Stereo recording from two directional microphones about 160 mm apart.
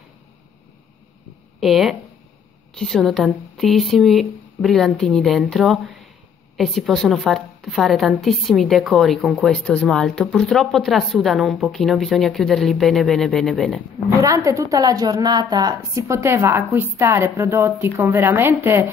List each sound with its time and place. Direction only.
1.6 s a woman's voice: centre (ahead or behind)
14.2 s a woman's voice: 20° right (ahead or behind)